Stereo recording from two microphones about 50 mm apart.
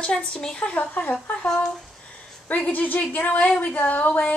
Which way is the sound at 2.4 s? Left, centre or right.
Left.